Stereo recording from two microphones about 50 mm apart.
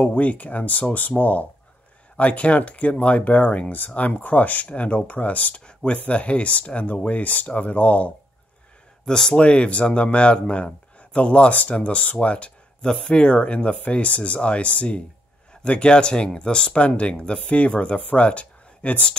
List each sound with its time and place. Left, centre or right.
0.0 s speech: left
9.0 s speech: centre
9.4 s speech: left